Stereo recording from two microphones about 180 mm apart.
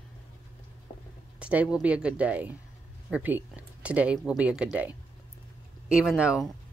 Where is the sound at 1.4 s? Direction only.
5° right (ahead or behind).